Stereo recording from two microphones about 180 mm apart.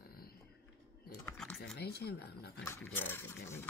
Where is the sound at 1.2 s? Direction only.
10° left (ahead or behind).